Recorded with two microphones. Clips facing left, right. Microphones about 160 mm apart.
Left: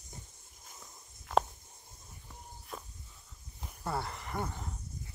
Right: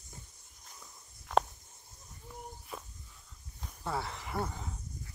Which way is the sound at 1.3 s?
5° left (ahead or behind).